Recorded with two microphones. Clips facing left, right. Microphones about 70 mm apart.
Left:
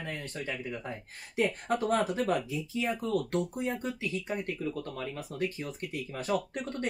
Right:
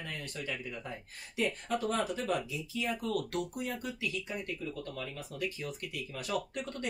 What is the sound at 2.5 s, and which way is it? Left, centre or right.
Speech, left.